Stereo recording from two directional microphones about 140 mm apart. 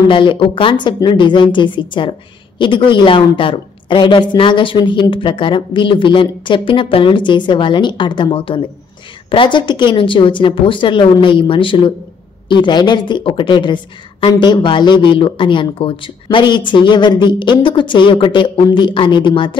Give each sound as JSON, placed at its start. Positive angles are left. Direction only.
{"t": 0.1, "sound": "a woman's voice", "side_deg": 35}